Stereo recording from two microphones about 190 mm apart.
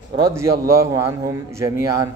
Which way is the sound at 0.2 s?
15° right (ahead or behind).